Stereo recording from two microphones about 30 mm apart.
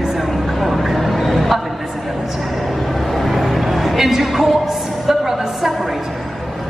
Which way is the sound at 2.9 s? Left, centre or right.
Centre.